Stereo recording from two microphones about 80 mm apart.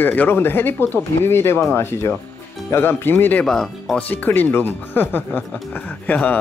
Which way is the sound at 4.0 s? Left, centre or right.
Centre.